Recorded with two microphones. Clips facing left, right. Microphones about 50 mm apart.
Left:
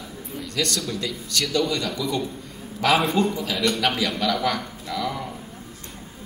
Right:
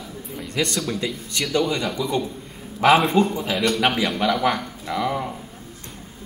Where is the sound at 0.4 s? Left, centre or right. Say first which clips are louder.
Right 2 dB; right.